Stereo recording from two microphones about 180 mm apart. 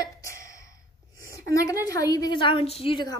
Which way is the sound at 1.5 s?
20° left (ahead or behind).